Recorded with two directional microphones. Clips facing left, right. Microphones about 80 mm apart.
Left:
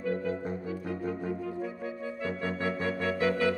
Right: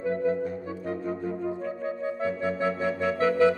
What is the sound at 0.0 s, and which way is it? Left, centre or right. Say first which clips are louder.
Music: right 5 dB; right.